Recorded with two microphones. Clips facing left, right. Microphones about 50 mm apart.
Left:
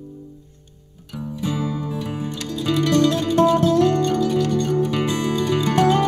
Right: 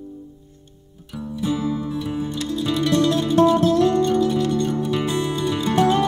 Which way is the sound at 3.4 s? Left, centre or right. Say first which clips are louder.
Left 2 dB; left.